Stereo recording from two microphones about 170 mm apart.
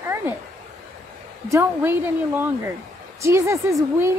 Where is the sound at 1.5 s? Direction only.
15° right (ahead or behind).